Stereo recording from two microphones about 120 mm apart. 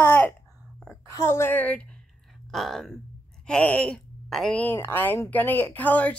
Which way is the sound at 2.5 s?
Centre (ahead or behind).